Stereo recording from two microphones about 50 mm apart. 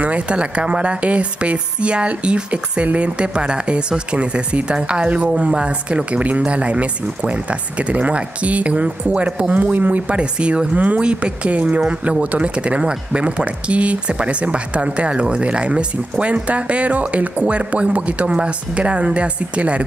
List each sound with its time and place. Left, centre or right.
0.0 s speech: right